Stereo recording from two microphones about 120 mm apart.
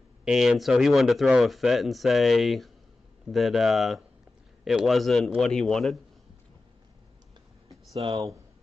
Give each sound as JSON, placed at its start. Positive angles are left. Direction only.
{"t": 0.2, "sound": "speech", "side_deg": -5}
{"t": 8.1, "sound": "speech", "side_deg": -30}